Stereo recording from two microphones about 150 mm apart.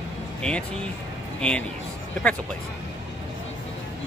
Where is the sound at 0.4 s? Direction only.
5° left (ahead or behind).